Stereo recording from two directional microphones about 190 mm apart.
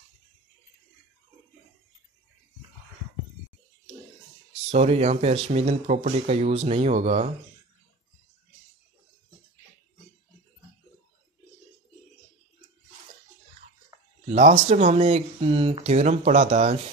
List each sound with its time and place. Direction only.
4.6 s speech: 35° right (ahead or behind)
14.7 s speech: 35° right (ahead or behind)